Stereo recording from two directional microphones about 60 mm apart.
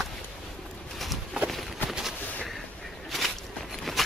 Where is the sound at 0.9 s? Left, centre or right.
Centre.